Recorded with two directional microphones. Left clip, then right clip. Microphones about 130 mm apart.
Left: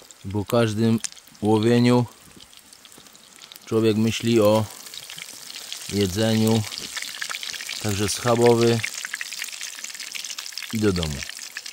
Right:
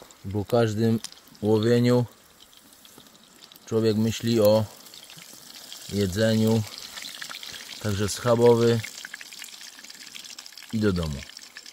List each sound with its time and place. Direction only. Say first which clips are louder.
0.6 s speech: left 2 dB; 55° left (ahead or behind)
3.6 s speech: left 3 dB; 50° left (ahead or behind)
5.0 s frying: left 8 dB; 20° left (ahead or behind)
6.2 s speech: right 1 dB; 40° left (ahead or behind)
6.5 s frying: left 3 dB; 15° left (ahead or behind)
7.8 s frying: left 2 dB; 35° left (ahead or behind)